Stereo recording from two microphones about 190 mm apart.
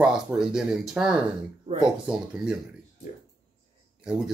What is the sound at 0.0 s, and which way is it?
Speech, 5° right (ahead or behind).